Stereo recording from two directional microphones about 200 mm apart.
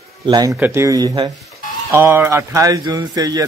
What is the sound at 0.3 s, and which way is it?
Speech, 20° right (ahead or behind).